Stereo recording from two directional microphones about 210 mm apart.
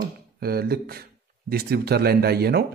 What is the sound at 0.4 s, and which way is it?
Speech, 45° right (ahead or behind).